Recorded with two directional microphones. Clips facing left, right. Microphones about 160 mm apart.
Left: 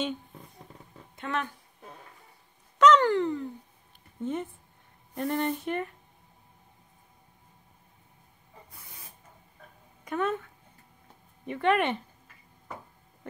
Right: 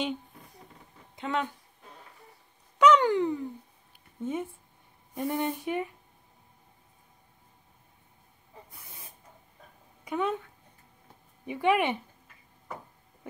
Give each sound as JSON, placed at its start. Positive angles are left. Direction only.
{"t": 1.1, "sound": "speech", "side_deg": -15}
{"t": 2.8, "sound": "a sound", "side_deg": -15}
{"t": 4.2, "sound": "speech", "side_deg": -10}
{"t": 10.0, "sound": "speech", "side_deg": -15}
{"t": 11.4, "sound": "speech", "side_deg": -10}